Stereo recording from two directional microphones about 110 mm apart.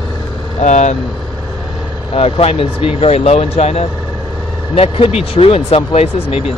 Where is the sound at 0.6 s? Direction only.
90° left.